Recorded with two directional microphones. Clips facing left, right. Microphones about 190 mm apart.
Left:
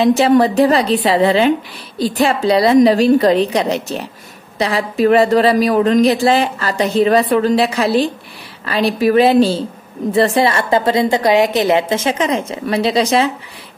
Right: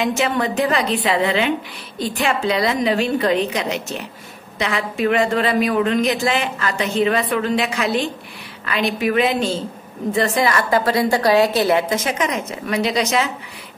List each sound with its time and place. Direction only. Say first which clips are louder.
0.0 s a woman's voice: left 9 dB; 35° left (ahead or behind)